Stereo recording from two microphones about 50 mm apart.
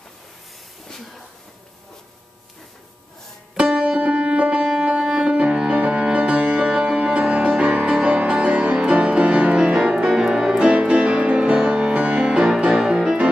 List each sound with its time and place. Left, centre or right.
3.5 s music: centre
4.6 s music: centre
6.7 s music: centre